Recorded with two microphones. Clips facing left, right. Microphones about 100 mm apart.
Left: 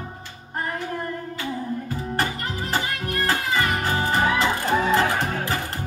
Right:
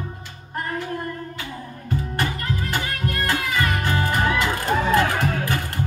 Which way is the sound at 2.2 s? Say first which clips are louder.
Left 2 dB; 30° left (ahead or behind).